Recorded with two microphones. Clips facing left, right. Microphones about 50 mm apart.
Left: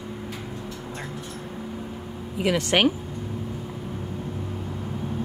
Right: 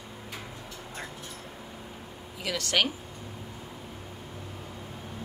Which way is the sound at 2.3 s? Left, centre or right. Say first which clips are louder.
Left 7 dB; left.